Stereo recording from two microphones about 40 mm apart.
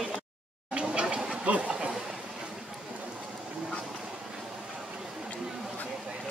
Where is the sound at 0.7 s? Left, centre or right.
Right.